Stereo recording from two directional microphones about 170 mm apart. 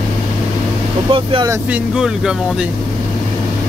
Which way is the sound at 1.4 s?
5° right (ahead or behind).